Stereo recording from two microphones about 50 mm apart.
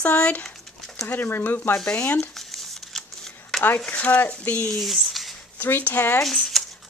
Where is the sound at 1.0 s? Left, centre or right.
Left.